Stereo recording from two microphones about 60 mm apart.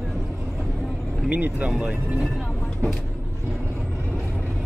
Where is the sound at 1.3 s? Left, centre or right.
Right.